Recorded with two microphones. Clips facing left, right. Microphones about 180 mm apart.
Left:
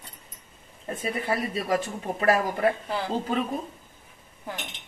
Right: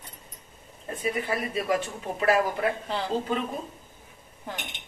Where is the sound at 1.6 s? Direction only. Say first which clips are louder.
Left 1 dB; 40° left (ahead or behind).